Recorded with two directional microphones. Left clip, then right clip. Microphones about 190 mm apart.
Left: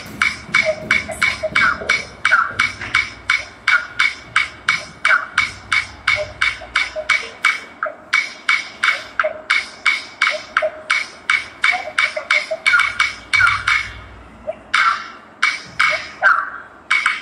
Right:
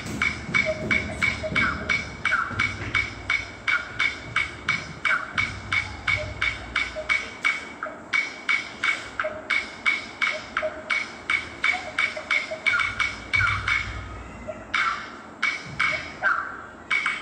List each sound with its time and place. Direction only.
0.2 s music: 40° left (ahead or behind)
14.7 s wood block: 40° left (ahead or behind)
16.9 s a sound: 40° left (ahead or behind)